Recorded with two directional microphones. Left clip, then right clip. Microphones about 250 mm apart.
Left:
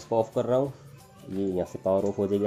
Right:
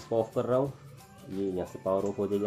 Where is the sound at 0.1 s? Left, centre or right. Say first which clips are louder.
Left 3 dB; left.